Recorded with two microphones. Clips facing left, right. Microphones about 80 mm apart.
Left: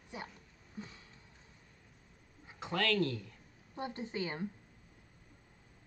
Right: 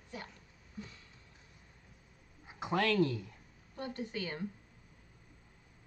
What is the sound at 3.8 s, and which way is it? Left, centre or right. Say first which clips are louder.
Speech: left 1 dB; left.